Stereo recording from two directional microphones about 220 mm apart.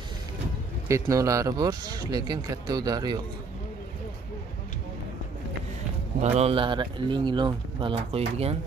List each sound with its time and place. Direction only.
0.8 s speech: 15° right (ahead or behind)
6.2 s speech: 30° right (ahead or behind)